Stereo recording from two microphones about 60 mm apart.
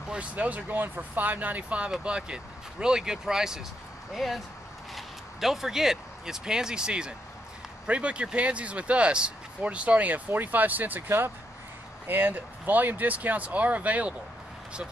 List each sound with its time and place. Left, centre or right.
0.1 s speech: right